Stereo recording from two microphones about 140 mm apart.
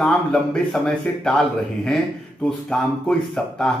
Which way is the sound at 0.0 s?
5° left (ahead or behind).